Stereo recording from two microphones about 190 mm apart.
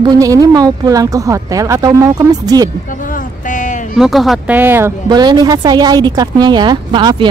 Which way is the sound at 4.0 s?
Centre (ahead or behind).